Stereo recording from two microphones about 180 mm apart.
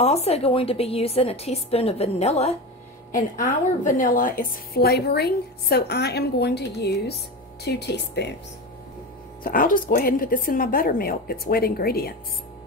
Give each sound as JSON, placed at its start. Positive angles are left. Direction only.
{"t": 0.0, "sound": "a woman's voice", "side_deg": 35}
{"t": 9.4, "sound": "a woman's voice", "side_deg": 50}